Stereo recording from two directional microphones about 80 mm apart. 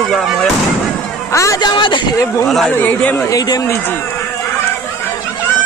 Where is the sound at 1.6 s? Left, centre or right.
Left.